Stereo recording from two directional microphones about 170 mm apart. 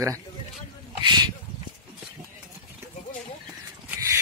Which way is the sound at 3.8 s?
15° right (ahead or behind).